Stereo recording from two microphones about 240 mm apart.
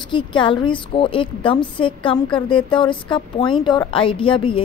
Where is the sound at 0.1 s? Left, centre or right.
Centre.